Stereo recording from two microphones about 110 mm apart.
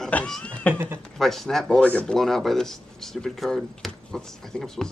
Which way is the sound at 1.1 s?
5° left (ahead or behind).